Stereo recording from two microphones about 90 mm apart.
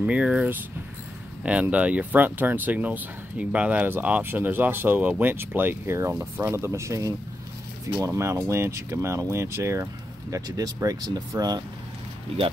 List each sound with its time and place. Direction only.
0.0 s speech: 10° right (ahead or behind); by 9.8 s 30° right (ahead or behind)
10.3 s speech: 45° right (ahead or behind)